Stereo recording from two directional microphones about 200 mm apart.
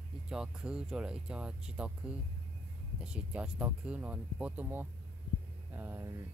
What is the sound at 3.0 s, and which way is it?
Speech, 5° right (ahead or behind).